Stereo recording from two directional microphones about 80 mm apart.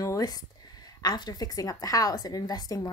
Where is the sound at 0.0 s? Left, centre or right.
Left.